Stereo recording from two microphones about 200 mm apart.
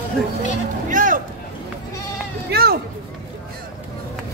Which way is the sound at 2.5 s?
50° right (ahead or behind).